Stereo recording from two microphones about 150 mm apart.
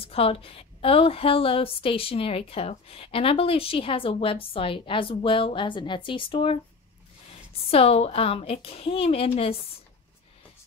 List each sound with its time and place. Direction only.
0.0 s a woman's voice: 40° left (ahead or behind)
7.7 s a woman's voice: 40° left (ahead or behind)